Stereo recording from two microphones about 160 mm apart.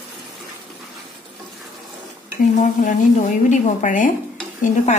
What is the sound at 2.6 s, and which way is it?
A woman's voice, 50° left (ahead or behind).